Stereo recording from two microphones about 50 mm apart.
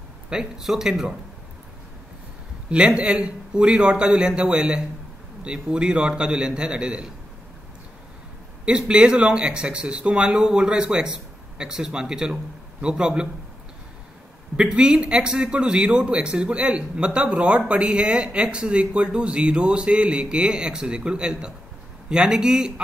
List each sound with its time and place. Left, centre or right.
0.3 s speech: centre
2.7 s a man's voice: right
8.6 s a man's voice: right
14.6 s a man's voice: centre